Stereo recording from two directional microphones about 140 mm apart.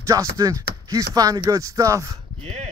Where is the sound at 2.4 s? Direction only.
50° right (ahead or behind).